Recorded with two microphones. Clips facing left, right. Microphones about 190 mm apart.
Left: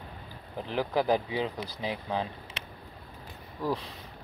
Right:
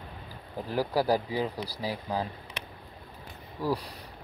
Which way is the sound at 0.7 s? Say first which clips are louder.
Right 1 dB; 10° right (ahead or behind).